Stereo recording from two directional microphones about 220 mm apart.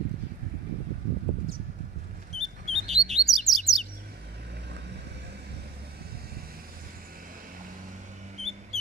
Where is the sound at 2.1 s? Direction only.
30° right (ahead or behind).